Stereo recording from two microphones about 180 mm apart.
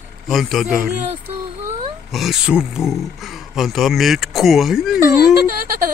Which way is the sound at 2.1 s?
Centre (ahead or behind).